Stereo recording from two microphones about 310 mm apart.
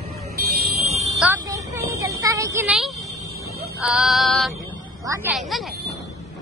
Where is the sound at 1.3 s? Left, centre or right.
Centre.